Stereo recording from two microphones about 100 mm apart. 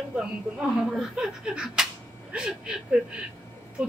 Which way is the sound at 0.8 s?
Centre (ahead or behind).